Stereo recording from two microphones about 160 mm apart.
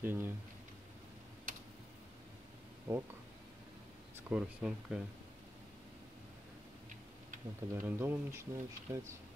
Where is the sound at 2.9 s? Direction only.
15° right (ahead or behind).